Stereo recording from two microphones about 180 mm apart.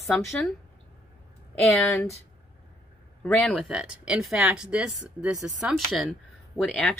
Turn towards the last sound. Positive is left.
turn(degrees=5)  # may be behind; listen again after turning